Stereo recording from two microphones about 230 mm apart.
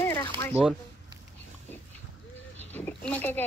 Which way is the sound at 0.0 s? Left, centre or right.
Centre.